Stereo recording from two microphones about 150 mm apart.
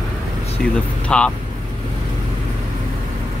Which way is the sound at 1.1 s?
5° left (ahead or behind).